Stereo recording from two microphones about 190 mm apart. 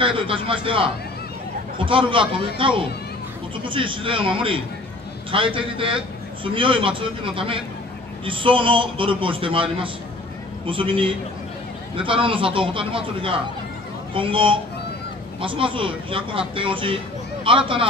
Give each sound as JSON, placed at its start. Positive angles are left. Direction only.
{"t": 0.0, "sound": "a man's voice", "side_deg": -25}